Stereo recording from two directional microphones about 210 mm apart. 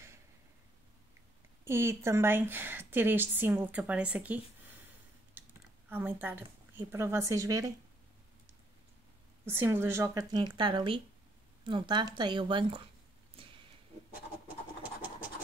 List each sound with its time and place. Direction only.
1.6 s speech: 10° right (ahead or behind)
5.9 s speech: 10° right (ahead or behind)
9.5 s speech: 10° right (ahead or behind)